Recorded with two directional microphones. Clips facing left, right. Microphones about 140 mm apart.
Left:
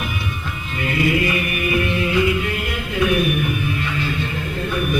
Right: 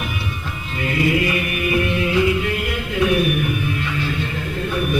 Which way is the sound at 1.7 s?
30° right (ahead or behind).